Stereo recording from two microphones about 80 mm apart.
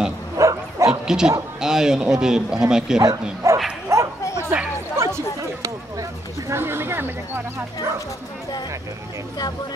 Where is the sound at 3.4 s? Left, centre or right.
Right.